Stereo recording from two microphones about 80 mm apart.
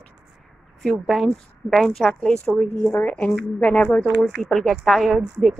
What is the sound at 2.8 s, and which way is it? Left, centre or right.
Speech, left.